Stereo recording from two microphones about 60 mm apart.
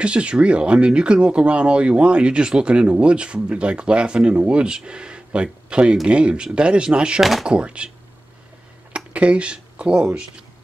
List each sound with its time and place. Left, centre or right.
0.0 s speech: centre
7.2 s speech: centre
7.4 s speech: centre
8.9 s speech: right